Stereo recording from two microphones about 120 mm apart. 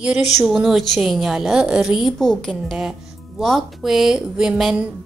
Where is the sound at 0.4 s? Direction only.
5° right (ahead or behind).